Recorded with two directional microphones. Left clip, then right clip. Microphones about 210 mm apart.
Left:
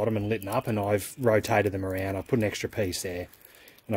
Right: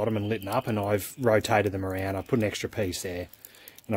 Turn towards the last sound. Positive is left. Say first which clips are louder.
# left 1 dB
turn(degrees=0)  # may be behind; listen again after turning